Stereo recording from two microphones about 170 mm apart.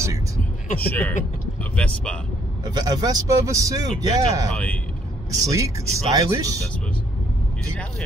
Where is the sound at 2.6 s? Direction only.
25° right (ahead or behind).